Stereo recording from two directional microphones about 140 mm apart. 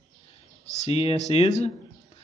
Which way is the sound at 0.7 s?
45° left (ahead or behind).